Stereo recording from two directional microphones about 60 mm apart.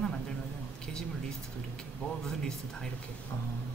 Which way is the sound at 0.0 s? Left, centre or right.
Centre.